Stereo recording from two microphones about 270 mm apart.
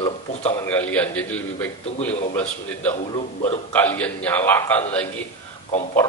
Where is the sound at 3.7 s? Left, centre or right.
Centre.